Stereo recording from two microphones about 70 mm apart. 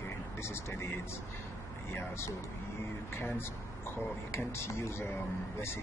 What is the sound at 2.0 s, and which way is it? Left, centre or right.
Speech, left.